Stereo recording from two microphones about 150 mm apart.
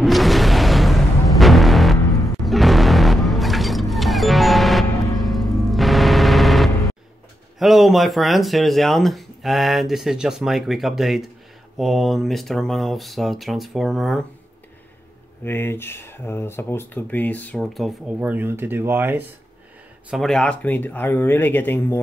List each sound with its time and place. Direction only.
0.0 s music: centre (ahead or behind)
7.5 s speech: centre (ahead or behind)
15.4 s speech: 15° left (ahead or behind); by 19.2 s 15° right (ahead or behind)
20.1 s speech: centre (ahead or behind)